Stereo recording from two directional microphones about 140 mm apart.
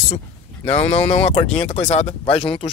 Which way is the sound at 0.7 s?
50° left (ahead or behind).